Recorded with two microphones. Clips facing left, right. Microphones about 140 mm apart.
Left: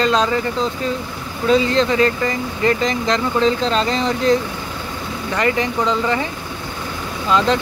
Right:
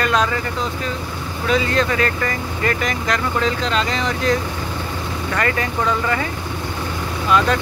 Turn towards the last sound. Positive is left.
turn(degrees=25)  # may be behind; listen again after turning